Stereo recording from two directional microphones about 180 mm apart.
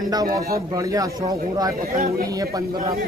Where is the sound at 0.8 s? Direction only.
20° right (ahead or behind).